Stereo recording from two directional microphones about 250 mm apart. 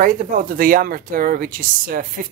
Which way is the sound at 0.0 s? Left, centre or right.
Right.